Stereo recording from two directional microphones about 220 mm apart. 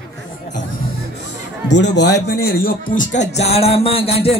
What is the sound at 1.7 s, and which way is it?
Speech, 50° left (ahead or behind).